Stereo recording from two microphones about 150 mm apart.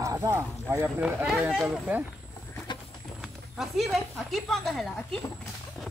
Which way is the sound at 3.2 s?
Centre (ahead or behind).